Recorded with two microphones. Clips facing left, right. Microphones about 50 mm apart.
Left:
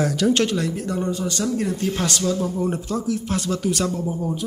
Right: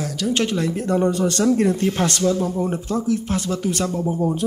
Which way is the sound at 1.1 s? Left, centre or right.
Right.